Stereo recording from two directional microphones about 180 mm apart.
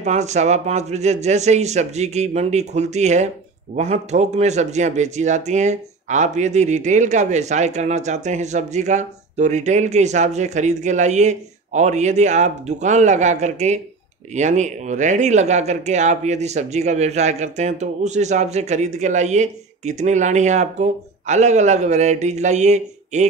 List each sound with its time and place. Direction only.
0.0 s speech: 40° right (ahead or behind)